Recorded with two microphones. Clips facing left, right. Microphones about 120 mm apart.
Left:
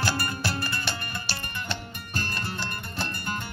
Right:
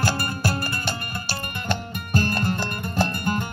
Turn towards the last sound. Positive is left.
turn(degrees=-45)  # may be behind; listen again after turning